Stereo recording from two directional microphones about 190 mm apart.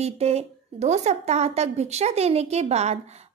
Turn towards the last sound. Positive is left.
turn(degrees=-35)  # may be behind; listen again after turning